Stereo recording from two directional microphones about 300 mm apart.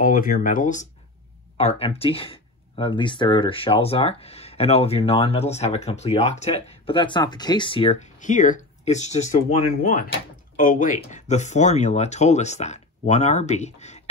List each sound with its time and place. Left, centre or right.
0.0 s speech: left